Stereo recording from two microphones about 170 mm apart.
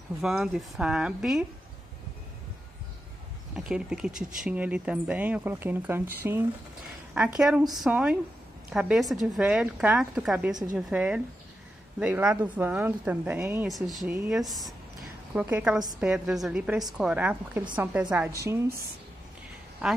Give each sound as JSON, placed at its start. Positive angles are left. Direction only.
{"t": 0.2, "sound": "a woman's voice", "side_deg": 0}
{"t": 3.5, "sound": "a woman's voice", "side_deg": -5}
{"t": 10.5, "sound": "a woman's voice", "side_deg": -25}
{"t": 10.9, "sound": "speech", "side_deg": -5}
{"t": 13.7, "sound": "a woman's voice", "side_deg": 0}
{"t": 18.3, "sound": "speech", "side_deg": -20}